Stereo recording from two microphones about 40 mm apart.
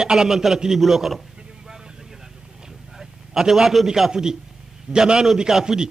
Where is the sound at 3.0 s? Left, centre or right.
Centre.